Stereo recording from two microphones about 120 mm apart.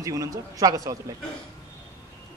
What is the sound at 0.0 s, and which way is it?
Speech, 30° right (ahead or behind).